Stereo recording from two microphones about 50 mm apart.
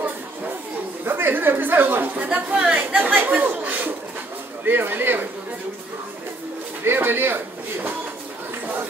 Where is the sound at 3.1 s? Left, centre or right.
Right.